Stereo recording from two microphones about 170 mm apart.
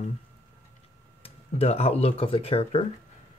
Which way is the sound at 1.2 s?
35° left (ahead or behind).